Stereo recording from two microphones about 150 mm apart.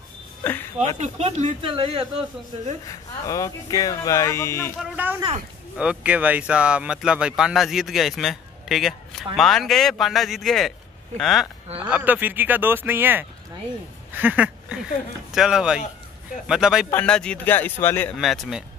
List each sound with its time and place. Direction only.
0.4 s a sound: 15° left (ahead or behind)
0.9 s speech: 50° right (ahead or behind)
2.9 s speech: 25° left (ahead or behind)
5.0 s speech: 10° right (ahead or behind)
11.8 s speech: 10° right (ahead or behind)
14.1 s a sound: 10° right (ahead or behind)
15.3 s a man's voice: 5° right (ahead or behind); by 18.1 s 15° left (ahead or behind)
18.1 s speech: centre (ahead or behind)